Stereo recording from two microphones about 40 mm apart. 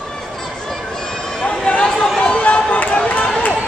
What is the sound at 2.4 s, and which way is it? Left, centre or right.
Run, left.